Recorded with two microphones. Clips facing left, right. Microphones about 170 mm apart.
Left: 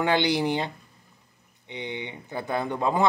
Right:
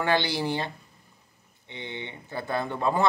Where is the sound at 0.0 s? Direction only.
15° left (ahead or behind).